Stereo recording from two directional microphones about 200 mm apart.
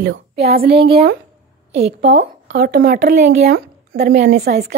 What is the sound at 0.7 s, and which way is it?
Speech, 25° right (ahead or behind).